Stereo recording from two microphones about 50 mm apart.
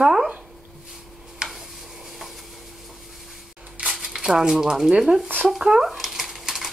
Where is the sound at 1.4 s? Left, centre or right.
Right.